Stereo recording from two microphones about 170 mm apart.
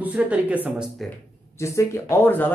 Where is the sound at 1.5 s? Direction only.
15° left (ahead or behind).